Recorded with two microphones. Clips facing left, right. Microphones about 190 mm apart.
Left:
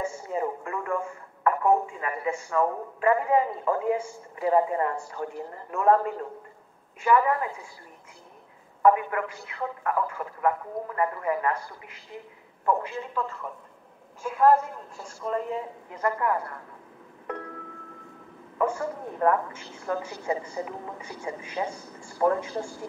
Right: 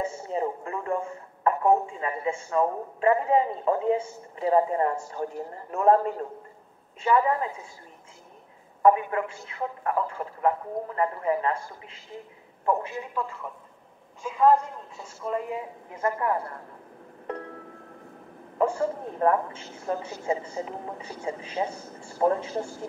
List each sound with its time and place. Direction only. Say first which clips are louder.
0.0 s radio: right 1 dB; 25° right (ahead or behind)
1.4 s a woman's voice: right 1 dB; 25° right (ahead or behind)
7.0 s a woman's voice: even; 25° right (ahead or behind)
8.8 s a woman's voice: right 1 dB; 25° right (ahead or behind)
14.2 s a woman's voice: even; 5° left (ahead or behind)
15.9 s a woman's voice: even; 25° right (ahead or behind)
18.6 s a woman's voice: right 2 dB; 30° right (ahead or behind)